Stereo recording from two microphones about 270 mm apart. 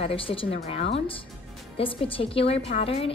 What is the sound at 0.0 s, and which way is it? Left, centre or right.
A woman's voice, centre.